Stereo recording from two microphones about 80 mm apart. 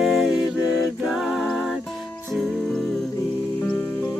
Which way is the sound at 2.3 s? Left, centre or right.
Centre.